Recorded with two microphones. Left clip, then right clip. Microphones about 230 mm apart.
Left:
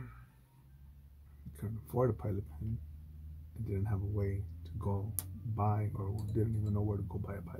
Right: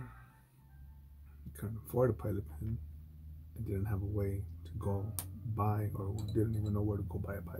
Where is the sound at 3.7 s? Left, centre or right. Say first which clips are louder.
Right 1 dB; centre.